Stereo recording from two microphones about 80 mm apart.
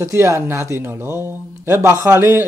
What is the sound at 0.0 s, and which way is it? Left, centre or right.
Speech, right.